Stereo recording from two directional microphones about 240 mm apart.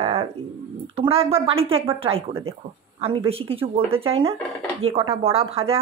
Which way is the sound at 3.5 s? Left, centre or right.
Right.